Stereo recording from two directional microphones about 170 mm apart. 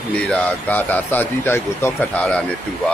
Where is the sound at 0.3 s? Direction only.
10° left (ahead or behind).